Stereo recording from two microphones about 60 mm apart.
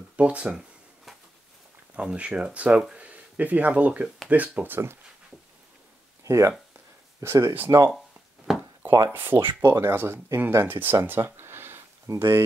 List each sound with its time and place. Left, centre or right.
0.1 s speech: right
2.0 s speech: centre
2.7 s speech: centre
3.0 s speech: right
6.2 s speech: right
8.5 s a sound: centre
9.1 s speech: right
9.7 s speech: right
9.9 s speech: right
12.1 s speech: right